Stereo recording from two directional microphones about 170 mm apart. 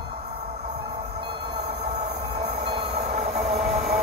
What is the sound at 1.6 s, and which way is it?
Train, 75° right (ahead or behind).